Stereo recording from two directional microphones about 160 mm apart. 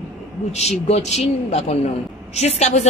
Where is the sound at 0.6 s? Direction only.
45° left (ahead or behind).